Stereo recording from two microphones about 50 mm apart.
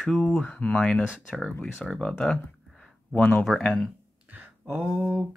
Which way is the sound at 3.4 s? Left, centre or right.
Centre.